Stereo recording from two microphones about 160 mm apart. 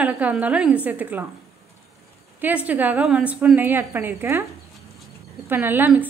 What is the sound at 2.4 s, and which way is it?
A woman's voice, 10° right (ahead or behind).